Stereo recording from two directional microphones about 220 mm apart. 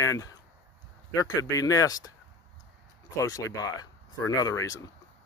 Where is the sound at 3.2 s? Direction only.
15° left (ahead or behind).